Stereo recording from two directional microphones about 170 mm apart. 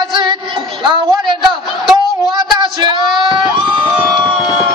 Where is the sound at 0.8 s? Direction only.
25° right (ahead or behind).